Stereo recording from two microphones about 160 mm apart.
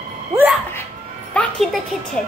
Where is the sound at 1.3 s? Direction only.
Centre (ahead or behind).